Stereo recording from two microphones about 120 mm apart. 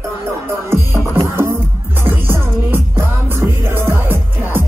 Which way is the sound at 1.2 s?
25° right (ahead or behind).